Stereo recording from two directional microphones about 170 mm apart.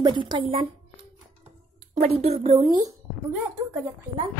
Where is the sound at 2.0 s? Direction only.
35° right (ahead or behind).